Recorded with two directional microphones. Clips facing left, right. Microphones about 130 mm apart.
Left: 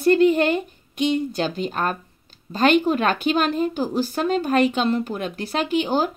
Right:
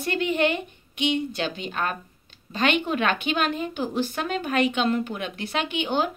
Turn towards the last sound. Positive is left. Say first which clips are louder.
# left 4 dB
turn(degrees=40)  # may be behind; listen again after turning